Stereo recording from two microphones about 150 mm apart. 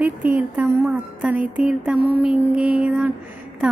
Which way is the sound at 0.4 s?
10° right (ahead or behind).